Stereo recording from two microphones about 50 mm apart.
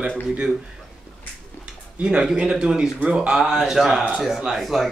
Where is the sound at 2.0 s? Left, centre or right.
Centre.